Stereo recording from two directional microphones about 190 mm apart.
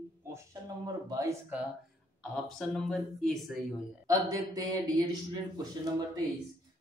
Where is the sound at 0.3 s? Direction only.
20° right (ahead or behind).